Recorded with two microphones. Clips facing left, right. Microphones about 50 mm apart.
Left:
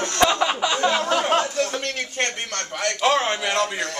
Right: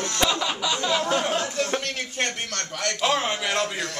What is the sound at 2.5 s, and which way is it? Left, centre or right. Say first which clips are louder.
Speech: left 3 dB; centre.